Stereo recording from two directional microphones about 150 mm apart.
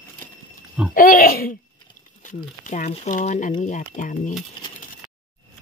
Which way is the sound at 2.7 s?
55° left (ahead or behind).